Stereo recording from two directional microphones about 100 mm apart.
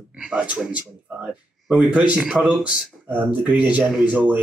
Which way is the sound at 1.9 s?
10° right (ahead or behind).